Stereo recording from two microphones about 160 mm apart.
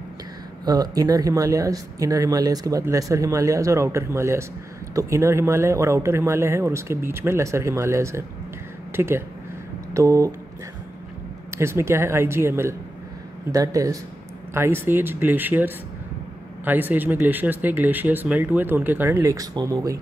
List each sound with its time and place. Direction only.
0.7 s speech: 25° right (ahead or behind)
11.5 s speech: 15° right (ahead or behind)